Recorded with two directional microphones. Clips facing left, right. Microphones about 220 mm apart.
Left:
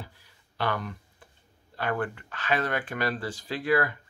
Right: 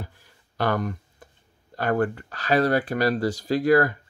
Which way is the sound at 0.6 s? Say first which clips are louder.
Right 6 dB; 45° right (ahead or behind).